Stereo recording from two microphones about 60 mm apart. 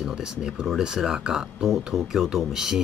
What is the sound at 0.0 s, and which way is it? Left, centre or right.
Speech, centre.